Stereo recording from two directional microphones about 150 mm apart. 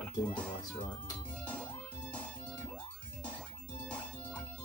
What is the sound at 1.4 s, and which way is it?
Music, 10° left (ahead or behind).